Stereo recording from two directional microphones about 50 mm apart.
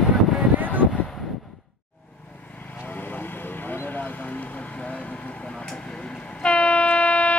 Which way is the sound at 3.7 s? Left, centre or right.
Left.